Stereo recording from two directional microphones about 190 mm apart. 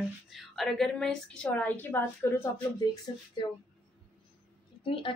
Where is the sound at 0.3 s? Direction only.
Centre (ahead or behind).